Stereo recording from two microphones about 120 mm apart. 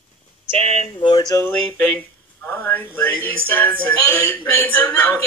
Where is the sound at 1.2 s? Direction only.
25° left (ahead or behind).